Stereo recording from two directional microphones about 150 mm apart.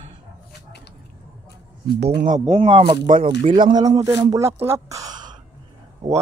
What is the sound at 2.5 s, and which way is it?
Speech, 40° right (ahead or behind).